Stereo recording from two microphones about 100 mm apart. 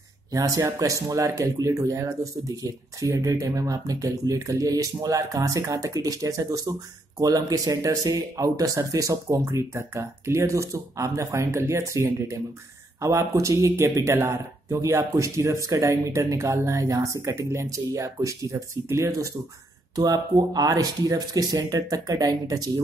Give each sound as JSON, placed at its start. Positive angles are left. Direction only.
{"t": 0.3, "sound": "speech", "side_deg": -35}